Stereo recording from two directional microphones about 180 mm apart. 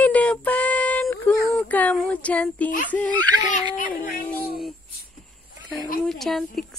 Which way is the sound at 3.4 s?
45° left (ahead or behind).